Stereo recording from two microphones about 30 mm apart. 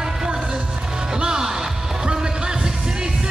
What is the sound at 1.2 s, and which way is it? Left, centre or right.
Music, right.